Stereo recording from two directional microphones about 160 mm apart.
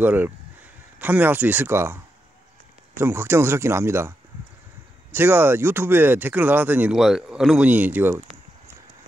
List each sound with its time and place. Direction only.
0.0 s speech: 10° right (ahead or behind)
3.0 s speech: 15° right (ahead or behind)
5.1 s speech: 15° right (ahead or behind)